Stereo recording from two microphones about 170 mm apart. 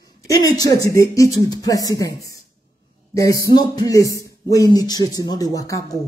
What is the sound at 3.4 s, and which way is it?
Speech, 25° left (ahead or behind).